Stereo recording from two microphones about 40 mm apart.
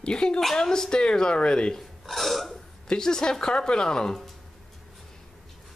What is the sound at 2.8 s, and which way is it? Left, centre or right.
Speech, centre.